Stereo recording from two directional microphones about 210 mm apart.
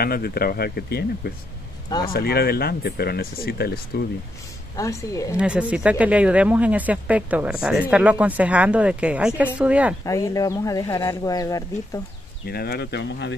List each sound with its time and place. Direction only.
0.0 s speech: 45° left (ahead or behind)
1.9 s speech: 20° left (ahead or behind)
2.1 s speech: 50° left (ahead or behind)
4.7 s speech: 15° left (ahead or behind)
5.4 s speech: 5° right (ahead or behind)
10.0 s speech: 15° left (ahead or behind)
12.4 s speech: 50° left (ahead or behind)